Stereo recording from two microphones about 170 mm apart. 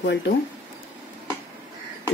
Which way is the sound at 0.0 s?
85° left.